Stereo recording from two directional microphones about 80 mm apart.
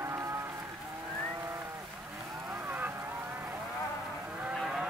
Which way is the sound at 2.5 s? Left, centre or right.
Right.